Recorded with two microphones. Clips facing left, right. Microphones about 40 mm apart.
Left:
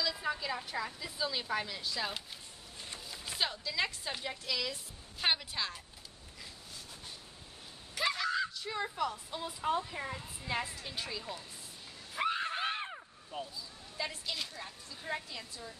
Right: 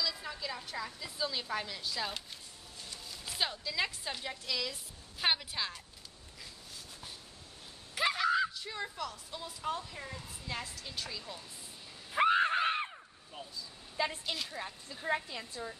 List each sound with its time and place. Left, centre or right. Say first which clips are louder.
0.0 s a woman's voice: left 3 dB; centre
3.3 s a woman's voice: even; centre
7.9 s screaming: right 3 dB; centre
8.6 s a woman's voice: left 4 dB; centre
12.1 s screaming: right 7 dB; right
12.9 s caw: left 5 dB; centre
13.9 s a woman's voice: right 4 dB; right